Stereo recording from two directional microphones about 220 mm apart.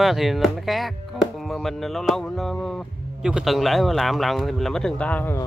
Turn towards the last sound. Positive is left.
turn(degrees=10)  # may be behind; listen again after turning